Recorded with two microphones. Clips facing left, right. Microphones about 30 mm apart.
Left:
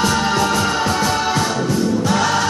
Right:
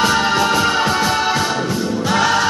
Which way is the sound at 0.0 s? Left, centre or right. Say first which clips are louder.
Right 2 dB; centre.